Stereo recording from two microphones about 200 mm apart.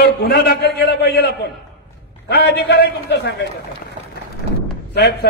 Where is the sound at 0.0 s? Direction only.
50° left (ahead or behind).